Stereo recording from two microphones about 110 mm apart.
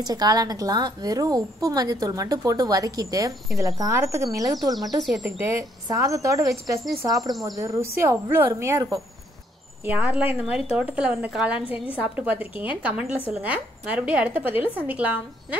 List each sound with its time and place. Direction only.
0.0 s a woman's voice: 35° right (ahead or behind)
4.7 s speech: centre (ahead or behind)
5.4 s a woman's voice: 25° right (ahead or behind)
7.2 s speech: centre (ahead or behind)
7.6 s a woman's voice: 25° right (ahead or behind)
9.8 s a woman's voice: 15° right (ahead or behind)